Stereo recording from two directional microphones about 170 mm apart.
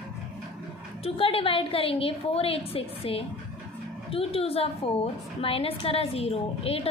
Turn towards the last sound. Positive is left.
turn(degrees=35)  # may be behind; listen again after turning